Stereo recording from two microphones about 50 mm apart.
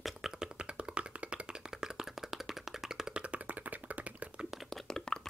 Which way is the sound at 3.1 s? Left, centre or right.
Right.